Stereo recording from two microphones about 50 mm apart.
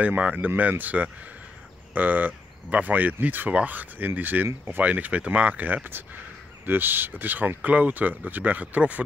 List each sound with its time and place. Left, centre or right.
0.0 s speech: right